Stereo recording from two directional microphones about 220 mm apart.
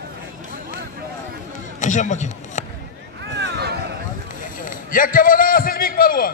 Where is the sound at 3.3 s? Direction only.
50° right (ahead or behind).